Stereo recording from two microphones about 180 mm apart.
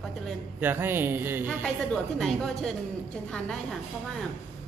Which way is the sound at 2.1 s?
Centre (ahead or behind).